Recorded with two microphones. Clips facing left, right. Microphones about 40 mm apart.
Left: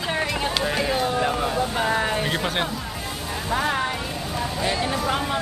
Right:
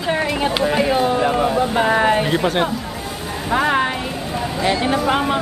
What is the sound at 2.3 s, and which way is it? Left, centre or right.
Speech, centre.